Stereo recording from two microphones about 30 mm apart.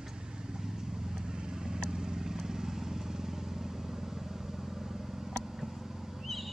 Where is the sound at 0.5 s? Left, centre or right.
Centre.